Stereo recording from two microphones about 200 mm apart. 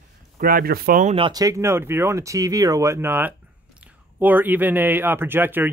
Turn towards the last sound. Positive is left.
turn(degrees=-10)  # may be behind; listen again after turning